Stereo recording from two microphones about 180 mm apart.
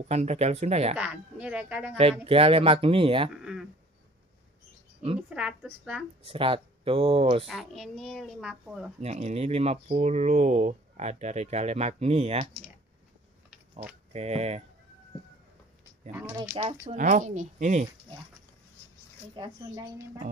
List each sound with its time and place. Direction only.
0.0 s speech: 40° right (ahead or behind)
0.9 s speech: 5° right (ahead or behind)
2.0 s speech: 35° right (ahead or behind)
3.3 s a sound: 5° right (ahead or behind)
5.3 s speech: 5° right (ahead or behind)
6.2 s speech: 30° right (ahead or behind)
7.4 s speech: centre (ahead or behind)
9.0 s speech: 35° right (ahead or behind)
14.1 s speech: 35° right (ahead or behind)
16.1 s speech: 15° right (ahead or behind)
16.4 s speech: 45° right (ahead or behind)
19.3 s a woman's voice: 25° right (ahead or behind)